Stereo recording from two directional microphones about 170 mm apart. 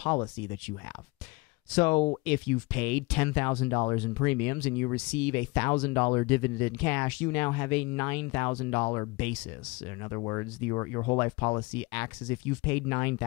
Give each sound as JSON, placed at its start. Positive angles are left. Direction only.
{"t": 0.0, "sound": "speech", "side_deg": 15}
{"t": 9.1, "sound": "speech", "side_deg": 10}